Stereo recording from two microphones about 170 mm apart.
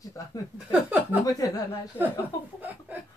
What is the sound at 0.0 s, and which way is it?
Speech, 20° left (ahead or behind).